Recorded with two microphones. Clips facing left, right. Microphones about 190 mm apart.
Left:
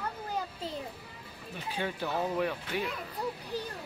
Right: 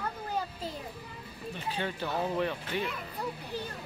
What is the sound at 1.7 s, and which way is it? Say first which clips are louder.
Speech: left 1 dB; 10° left (ahead or behind).